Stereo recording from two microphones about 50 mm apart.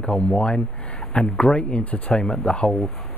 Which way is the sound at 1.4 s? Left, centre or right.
Left.